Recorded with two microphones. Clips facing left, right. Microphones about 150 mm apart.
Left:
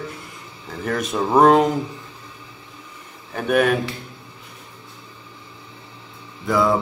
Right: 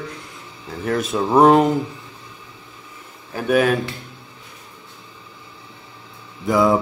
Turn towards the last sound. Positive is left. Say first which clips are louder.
# right 2 dB
turn(degrees=-20)  # may be behind; listen again after turning